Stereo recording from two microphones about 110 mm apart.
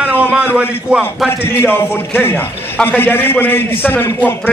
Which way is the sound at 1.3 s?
20° left (ahead or behind).